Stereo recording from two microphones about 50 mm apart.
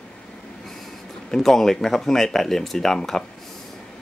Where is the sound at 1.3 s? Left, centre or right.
Centre.